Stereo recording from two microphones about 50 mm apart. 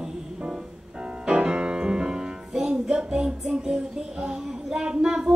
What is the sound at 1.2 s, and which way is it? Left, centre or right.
Music, centre.